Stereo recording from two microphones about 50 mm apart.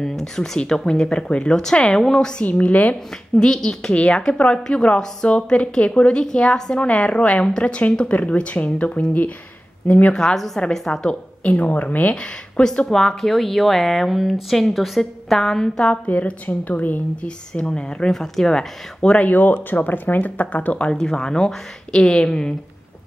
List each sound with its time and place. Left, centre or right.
0.0 s speech: centre
2.4 s a woman's voice: left
3.3 s speech: centre
3.9 s a woman's voice: left
10.1 s speech: centre
11.4 s a woman's voice: left
12.6 s speech: centre
16.1 s speech: left
17.6 s speech: centre
19.2 s speech: left
20.9 s speech: centre